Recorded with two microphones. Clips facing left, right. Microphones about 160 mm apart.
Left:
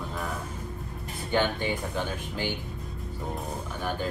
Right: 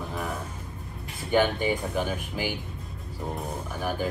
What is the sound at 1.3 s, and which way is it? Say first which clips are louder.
Speech: right 3 dB; 20° right (ahead or behind).